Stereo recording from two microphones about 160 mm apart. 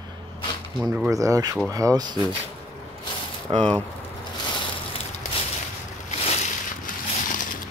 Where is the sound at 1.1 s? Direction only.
20° right (ahead or behind).